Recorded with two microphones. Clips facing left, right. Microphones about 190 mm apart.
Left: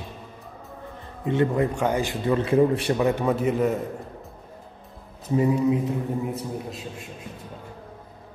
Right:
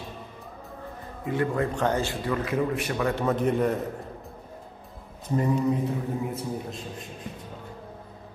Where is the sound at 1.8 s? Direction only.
10° left (ahead or behind).